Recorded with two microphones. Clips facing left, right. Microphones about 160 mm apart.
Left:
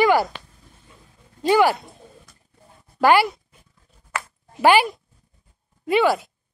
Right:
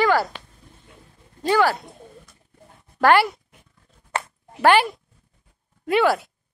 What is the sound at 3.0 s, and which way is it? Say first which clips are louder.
Speech: even; 5° left (ahead or behind).